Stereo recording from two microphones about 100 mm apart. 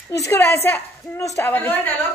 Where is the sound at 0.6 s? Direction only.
20° left (ahead or behind).